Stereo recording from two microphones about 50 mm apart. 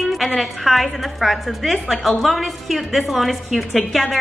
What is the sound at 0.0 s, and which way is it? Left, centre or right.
A woman's voice, centre.